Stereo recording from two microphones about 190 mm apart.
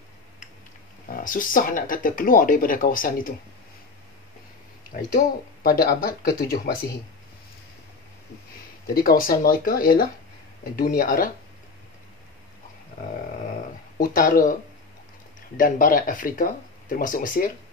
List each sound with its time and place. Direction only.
1.0 s speech: 45° left (ahead or behind)
4.9 s speech: 55° left (ahead or behind)
8.8 s speech: 50° left (ahead or behind)
13.9 s speech: 50° left (ahead or behind)